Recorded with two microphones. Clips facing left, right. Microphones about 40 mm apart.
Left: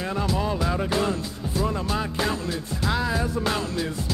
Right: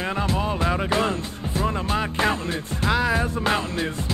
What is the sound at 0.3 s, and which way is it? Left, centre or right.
Music, right.